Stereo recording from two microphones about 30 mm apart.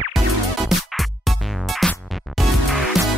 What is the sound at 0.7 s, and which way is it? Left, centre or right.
Music, centre.